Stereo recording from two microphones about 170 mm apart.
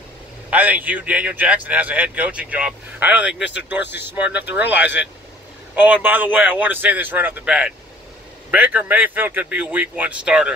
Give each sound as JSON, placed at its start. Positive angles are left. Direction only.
{"t": 0.5, "sound": "speech", "side_deg": -10}
{"t": 3.4, "sound": "speech", "side_deg": 90}
{"t": 4.0, "sound": "speech", "side_deg": -10}